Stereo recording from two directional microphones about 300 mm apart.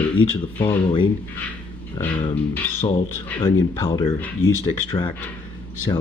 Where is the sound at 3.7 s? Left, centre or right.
Centre.